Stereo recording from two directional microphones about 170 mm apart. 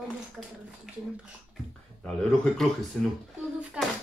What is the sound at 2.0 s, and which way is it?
Speech, 5° left (ahead or behind).